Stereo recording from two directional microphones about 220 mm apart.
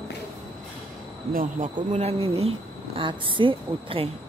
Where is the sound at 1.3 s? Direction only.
40° right (ahead or behind).